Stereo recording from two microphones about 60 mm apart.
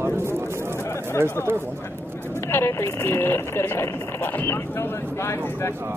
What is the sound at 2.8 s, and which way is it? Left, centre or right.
Speech, left.